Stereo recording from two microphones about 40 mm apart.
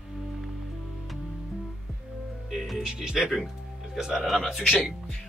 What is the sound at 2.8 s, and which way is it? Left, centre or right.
Speech, centre.